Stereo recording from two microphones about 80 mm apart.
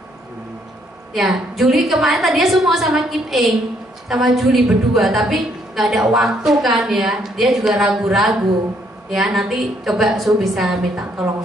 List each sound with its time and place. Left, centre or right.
1.1 s a woman's voice: centre